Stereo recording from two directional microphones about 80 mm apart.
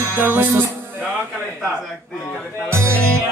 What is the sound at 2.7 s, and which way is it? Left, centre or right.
Music, right.